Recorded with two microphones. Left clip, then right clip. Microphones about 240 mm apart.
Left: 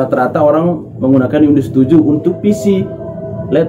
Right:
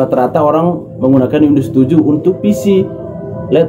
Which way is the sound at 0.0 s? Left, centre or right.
Centre.